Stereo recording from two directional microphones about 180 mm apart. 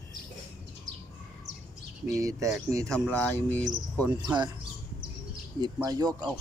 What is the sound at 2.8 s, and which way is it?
Speech, 5° left (ahead or behind).